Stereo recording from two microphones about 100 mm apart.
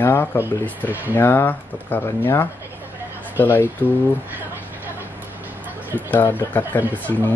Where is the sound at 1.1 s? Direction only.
20° left (ahead or behind).